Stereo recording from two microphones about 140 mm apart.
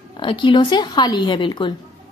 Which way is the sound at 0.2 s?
35° left (ahead or behind).